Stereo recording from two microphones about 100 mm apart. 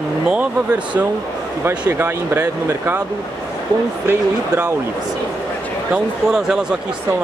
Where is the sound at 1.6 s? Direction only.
20° right (ahead or behind).